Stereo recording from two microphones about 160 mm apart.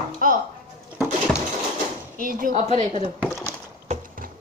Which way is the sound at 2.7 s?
45° right (ahead or behind).